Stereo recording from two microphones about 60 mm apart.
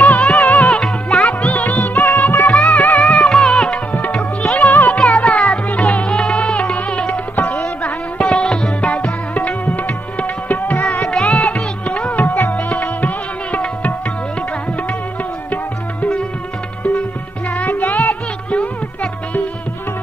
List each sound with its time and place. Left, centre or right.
0.0 s music: centre; by 2.5 s left
2.5 s music: centre
3.9 s music: left
8.2 s music: centre
17.6 s music: left